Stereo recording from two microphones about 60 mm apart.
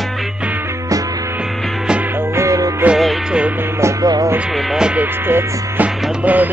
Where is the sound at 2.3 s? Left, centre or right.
Right.